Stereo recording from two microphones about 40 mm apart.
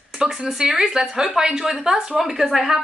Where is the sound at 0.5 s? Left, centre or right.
Centre.